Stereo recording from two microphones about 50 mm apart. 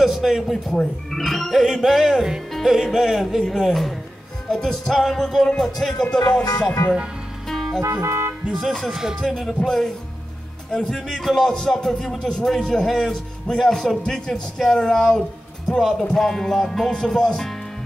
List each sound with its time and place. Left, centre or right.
0.0 s speech: centre
0.7 s speech: centre
7.4 s music: centre
7.8 s music: right
8.5 s speech: centre